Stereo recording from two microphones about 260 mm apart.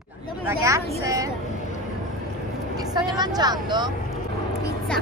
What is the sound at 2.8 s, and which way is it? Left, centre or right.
Speech, centre.